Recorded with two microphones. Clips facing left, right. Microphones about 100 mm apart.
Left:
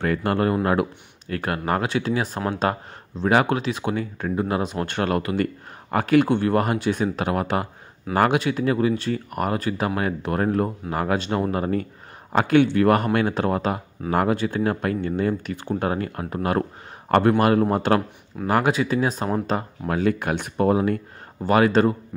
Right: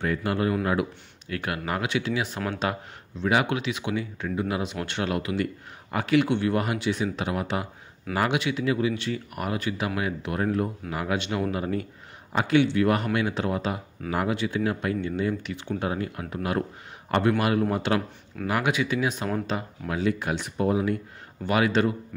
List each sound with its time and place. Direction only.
0.0 s speech: 55° left (ahead or behind)
1.3 s speech: 40° left (ahead or behind)
19.9 s speech: 50° left (ahead or behind)